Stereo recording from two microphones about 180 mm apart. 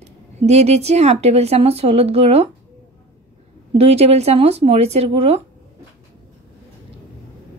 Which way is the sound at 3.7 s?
35° right (ahead or behind).